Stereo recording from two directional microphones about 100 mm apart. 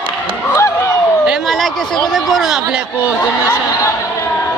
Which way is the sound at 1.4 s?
Centre (ahead or behind).